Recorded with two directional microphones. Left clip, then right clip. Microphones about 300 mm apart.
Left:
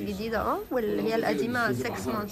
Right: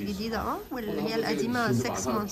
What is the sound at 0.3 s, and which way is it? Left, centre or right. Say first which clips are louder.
A woman's voice: left 5 dB; centre.